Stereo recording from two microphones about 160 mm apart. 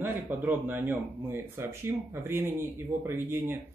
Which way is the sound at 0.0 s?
10° right (ahead or behind).